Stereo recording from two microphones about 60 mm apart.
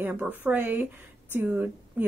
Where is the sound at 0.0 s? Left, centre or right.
Right.